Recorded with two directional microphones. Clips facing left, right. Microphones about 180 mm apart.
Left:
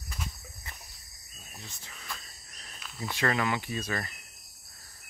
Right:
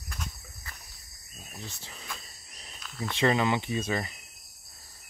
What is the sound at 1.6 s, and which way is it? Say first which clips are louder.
Speech: right 5 dB; 30° right (ahead or behind).